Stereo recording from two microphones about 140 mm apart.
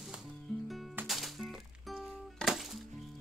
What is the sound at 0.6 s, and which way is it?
Music, centre (ahead or behind).